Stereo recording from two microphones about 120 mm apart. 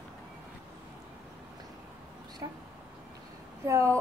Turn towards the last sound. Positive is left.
turn(degrees=-25)  # may be behind; listen again after turning